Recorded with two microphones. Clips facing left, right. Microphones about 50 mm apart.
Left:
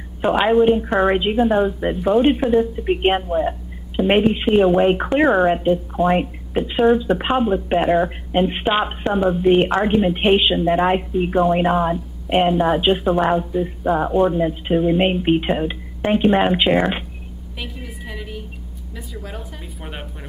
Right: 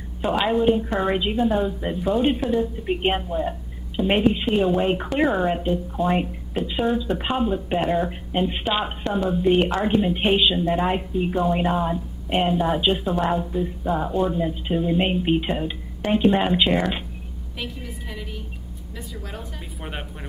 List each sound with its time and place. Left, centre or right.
0.2 s a woman's voice: left
9.7 s a woman's voice: left
17.7 s a woman's voice: centre